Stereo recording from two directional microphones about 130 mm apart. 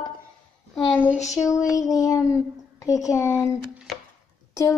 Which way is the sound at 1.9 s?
25° left (ahead or behind).